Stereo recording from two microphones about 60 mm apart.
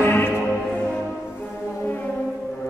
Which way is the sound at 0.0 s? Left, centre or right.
Left.